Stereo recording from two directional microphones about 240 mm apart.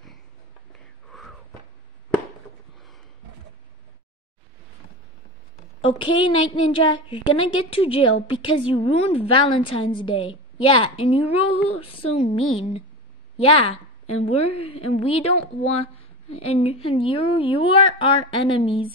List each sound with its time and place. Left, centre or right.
1.1 s a sound: centre
5.8 s a woman's voice: left
16.4 s a woman's voice: left